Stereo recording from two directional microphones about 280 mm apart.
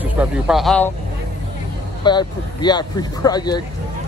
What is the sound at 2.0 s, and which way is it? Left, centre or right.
Speech, centre.